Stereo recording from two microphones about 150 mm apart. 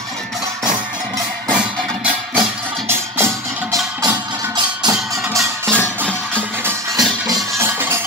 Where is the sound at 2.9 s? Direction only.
15° right (ahead or behind).